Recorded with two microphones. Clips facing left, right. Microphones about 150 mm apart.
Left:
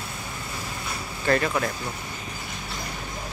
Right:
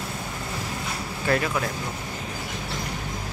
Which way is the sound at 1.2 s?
5° right (ahead or behind).